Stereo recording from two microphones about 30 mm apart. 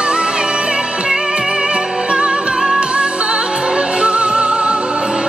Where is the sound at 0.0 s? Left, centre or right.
Right.